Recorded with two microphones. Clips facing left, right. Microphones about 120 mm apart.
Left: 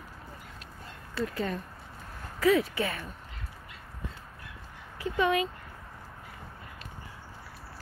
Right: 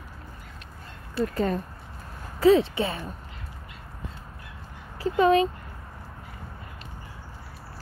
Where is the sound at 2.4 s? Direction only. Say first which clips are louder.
Right 6 dB; 30° right (ahead or behind).